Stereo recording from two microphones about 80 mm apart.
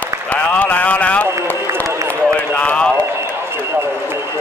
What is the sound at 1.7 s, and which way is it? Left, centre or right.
Run, right.